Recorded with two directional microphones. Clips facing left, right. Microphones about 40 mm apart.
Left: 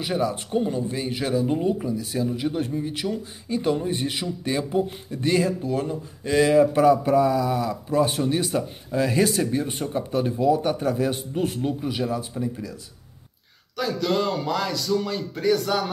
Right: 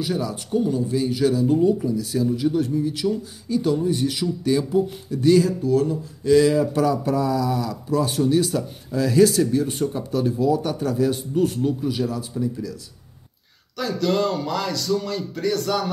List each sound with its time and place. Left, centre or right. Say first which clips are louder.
0.0 s speech: left 1 dB; left
13.7 s speech: right 2 dB; centre